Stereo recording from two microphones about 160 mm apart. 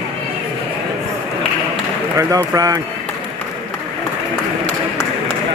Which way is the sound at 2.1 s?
20° right (ahead or behind).